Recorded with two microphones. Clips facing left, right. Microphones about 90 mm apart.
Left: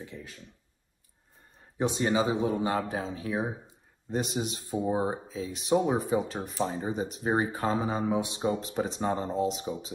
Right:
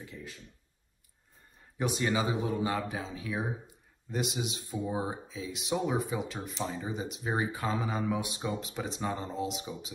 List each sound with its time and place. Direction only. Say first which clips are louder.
0.0 s speech: left 2 dB; 35° left (ahead or behind)
1.8 s speech: left 4 dB; 30° left (ahead or behind)
8.5 s speech: left 8 dB; 40° left (ahead or behind)